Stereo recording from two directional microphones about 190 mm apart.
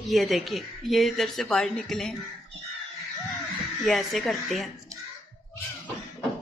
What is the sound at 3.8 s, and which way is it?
Speech, centre (ahead or behind).